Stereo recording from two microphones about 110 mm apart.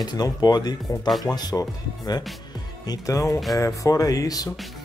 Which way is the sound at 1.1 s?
Centre (ahead or behind).